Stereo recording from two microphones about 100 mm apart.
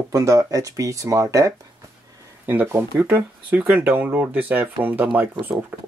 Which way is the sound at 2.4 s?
20° right (ahead or behind).